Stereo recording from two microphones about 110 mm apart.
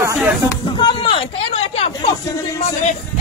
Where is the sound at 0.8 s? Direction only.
50° left (ahead or behind).